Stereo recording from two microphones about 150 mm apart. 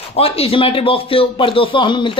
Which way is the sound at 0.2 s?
40° left (ahead or behind).